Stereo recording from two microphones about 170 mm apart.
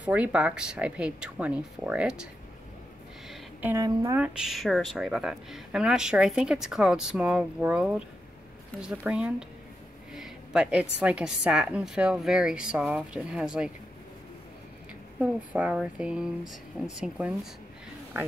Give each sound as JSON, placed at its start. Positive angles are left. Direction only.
{"t": 0.0, "sound": "speech", "side_deg": -10}
{"t": 3.7, "sound": "a woman's voice", "side_deg": -20}
{"t": 4.2, "sound": "speech", "side_deg": -5}
{"t": 10.1, "sound": "a sound", "side_deg": -5}
{"t": 11.0, "sound": "speech", "side_deg": -5}
{"t": 15.1, "sound": "speech", "side_deg": -10}